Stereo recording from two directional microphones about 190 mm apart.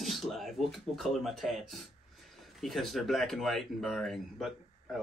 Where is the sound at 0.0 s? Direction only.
Centre (ahead or behind).